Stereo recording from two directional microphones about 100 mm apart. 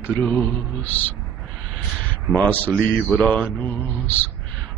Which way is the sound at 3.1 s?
15° left (ahead or behind).